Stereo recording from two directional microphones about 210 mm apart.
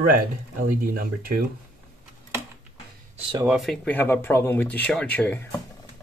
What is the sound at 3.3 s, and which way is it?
Speech, 5° right (ahead or behind).